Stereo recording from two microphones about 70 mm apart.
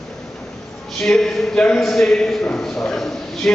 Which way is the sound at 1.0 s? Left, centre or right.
Centre.